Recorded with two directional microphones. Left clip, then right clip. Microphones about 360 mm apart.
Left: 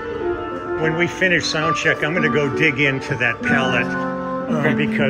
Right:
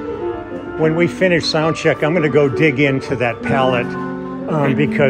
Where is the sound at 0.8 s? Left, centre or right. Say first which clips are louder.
Right 4 dB; centre.